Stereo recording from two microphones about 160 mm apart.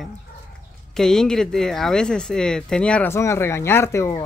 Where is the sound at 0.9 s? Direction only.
5° left (ahead or behind).